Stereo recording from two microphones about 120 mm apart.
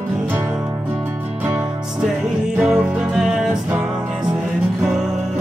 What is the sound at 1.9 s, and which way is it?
Music, 5° right (ahead or behind).